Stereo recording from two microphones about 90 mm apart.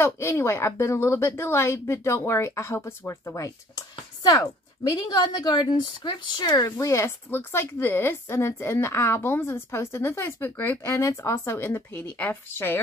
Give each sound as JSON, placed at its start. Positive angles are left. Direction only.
{"t": 0.0, "sound": "a woman's voice", "side_deg": 30}
{"t": 7.2, "sound": "speech", "side_deg": 25}